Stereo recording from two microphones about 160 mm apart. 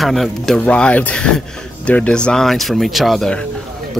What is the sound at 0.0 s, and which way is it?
Speech, centre (ahead or behind).